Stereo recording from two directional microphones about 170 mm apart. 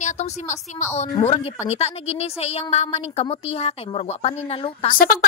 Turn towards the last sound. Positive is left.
turn(degrees=55)  # may be behind; listen again after turning